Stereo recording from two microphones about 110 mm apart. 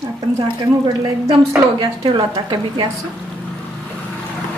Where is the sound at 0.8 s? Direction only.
35° right (ahead or behind).